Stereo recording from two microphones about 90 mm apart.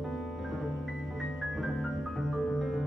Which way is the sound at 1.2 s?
Centre (ahead or behind).